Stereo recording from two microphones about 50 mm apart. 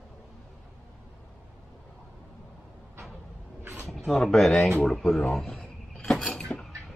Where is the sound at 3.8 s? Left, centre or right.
Centre.